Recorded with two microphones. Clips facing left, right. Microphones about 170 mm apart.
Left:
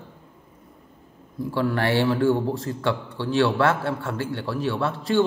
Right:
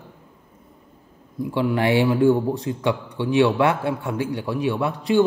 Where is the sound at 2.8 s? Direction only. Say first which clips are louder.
Right 2 dB; 15° right (ahead or behind).